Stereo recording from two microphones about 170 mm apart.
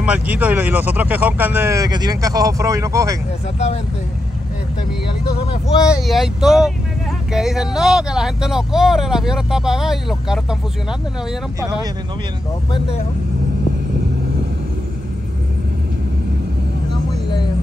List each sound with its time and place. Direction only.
0.0 s speech: 10° right (ahead or behind)
3.5 s speech: 40° left (ahead or behind)
5.9 s speech: centre (ahead or behind)